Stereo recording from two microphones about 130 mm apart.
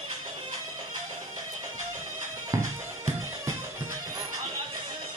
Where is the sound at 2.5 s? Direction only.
25° right (ahead or behind).